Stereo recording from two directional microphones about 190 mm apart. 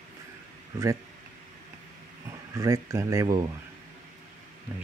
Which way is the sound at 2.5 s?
15° right (ahead or behind).